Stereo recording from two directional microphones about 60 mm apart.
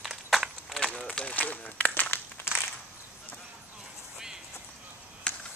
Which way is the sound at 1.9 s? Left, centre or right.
Left.